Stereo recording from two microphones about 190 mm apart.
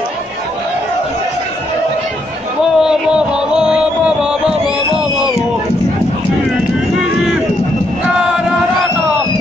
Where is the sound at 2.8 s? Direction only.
5° right (ahead or behind).